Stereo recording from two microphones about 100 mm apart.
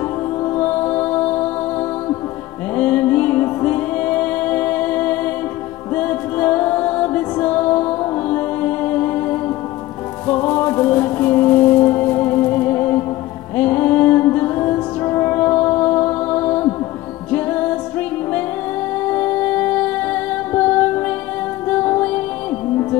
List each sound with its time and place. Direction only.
0.6 s music: 15° left (ahead or behind)
2.7 s music: 15° left (ahead or behind)
19.0 s music: 15° left (ahead or behind)